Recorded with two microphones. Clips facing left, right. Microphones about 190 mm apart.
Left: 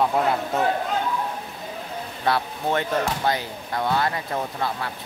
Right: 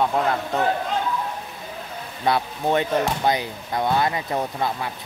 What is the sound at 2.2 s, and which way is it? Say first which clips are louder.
Speech: right 2 dB; 15° right (ahead or behind).